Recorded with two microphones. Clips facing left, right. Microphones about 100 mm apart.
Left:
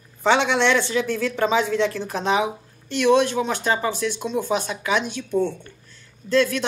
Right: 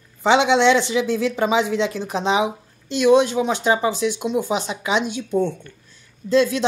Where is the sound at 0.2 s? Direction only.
15° right (ahead or behind).